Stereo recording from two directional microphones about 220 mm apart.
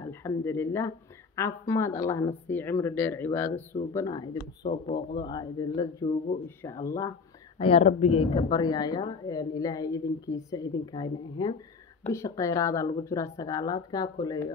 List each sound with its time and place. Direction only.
0.0 s speech: 10° left (ahead or behind)
7.5 s speech: 25° left (ahead or behind)